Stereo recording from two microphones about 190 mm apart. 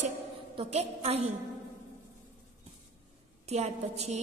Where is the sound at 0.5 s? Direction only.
30° right (ahead or behind).